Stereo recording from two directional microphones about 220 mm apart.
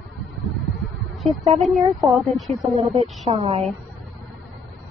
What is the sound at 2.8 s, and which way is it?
Speech, 30° right (ahead or behind).